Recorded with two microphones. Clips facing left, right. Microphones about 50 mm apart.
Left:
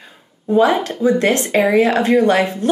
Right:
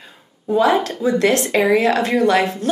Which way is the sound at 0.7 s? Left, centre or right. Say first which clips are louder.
Left 1 dB; centre.